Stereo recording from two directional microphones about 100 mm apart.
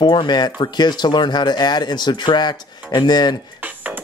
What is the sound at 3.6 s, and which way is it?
Music, 15° right (ahead or behind).